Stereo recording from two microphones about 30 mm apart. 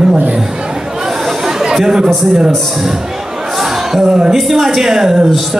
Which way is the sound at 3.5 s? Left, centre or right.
Centre.